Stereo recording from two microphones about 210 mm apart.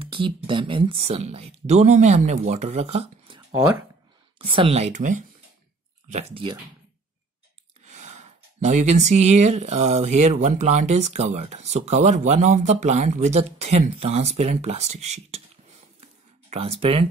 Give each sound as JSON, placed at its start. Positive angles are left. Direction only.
{"t": 0.0, "sound": "speech", "side_deg": -25}
{"t": 7.8, "sound": "speech", "side_deg": -35}
{"t": 16.4, "sound": "speech", "side_deg": -30}